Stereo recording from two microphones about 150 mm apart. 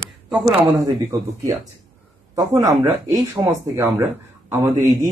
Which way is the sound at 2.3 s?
25° right (ahead or behind).